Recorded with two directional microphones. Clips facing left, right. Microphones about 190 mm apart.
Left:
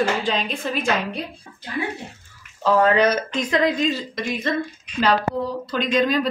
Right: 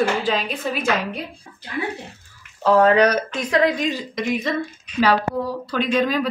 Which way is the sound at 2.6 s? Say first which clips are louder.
Right 2 dB; 10° right (ahead or behind).